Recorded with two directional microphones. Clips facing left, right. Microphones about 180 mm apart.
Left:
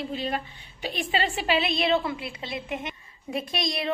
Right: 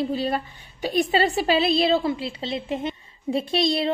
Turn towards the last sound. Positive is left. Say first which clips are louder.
# right 8 dB
turn(degrees=-30)  # may be behind; listen again after turning